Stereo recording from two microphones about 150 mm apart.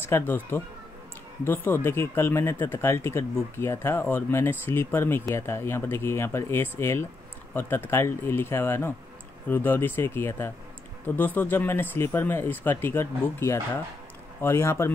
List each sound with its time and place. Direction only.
0.0 s speech: 15° left (ahead or behind)